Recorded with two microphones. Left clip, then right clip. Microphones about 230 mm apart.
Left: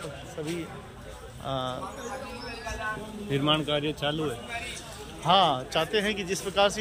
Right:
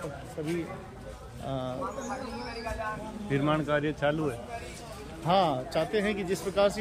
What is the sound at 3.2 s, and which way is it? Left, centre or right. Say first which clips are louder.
Speech: left 2 dB; centre.